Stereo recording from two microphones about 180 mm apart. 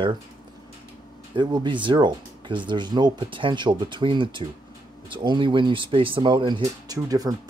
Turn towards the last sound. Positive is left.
turn(degrees=-20)  # may be behind; listen again after turning